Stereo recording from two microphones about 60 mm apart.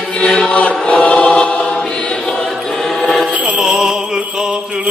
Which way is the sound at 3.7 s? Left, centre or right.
Centre.